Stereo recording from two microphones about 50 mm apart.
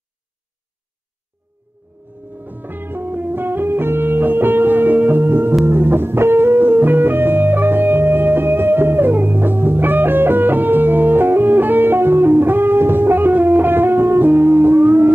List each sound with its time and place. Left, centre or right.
2.4 s music: right